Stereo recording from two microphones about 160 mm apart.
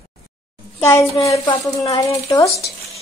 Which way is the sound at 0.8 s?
15° left (ahead or behind).